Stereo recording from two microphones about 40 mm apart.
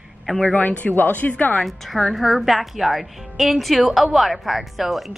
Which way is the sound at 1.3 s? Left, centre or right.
Left.